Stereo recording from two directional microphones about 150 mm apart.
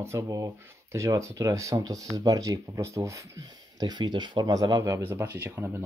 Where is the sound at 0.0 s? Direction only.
20° right (ahead or behind).